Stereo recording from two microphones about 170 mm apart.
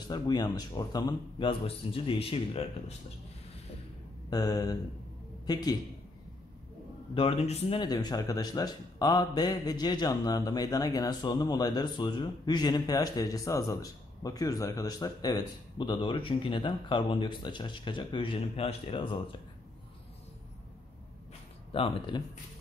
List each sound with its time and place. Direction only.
0.1 s a man's voice: 25° left (ahead or behind)
4.3 s a man's voice: 20° left (ahead or behind)
7.2 s a man's voice: 35° left (ahead or behind)
7.8 s a man's voice: 25° left (ahead or behind)
21.7 s a man's voice: 30° left (ahead or behind)